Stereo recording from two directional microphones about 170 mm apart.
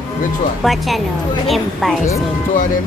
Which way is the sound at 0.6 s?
Centre (ahead or behind).